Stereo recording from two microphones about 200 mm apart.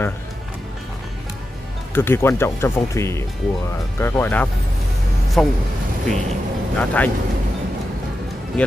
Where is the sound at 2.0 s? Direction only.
10° left (ahead or behind).